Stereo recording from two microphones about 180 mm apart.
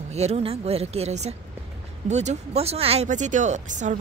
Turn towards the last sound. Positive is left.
turn(degrees=-45)  # may be behind; listen again after turning